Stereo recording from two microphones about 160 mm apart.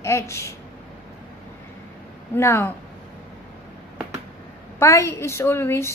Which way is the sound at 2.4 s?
15° left (ahead or behind).